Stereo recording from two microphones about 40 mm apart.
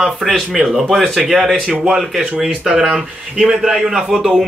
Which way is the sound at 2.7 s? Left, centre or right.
Centre.